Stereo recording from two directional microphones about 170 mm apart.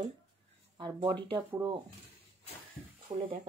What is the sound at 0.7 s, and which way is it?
Speech, 25° right (ahead or behind).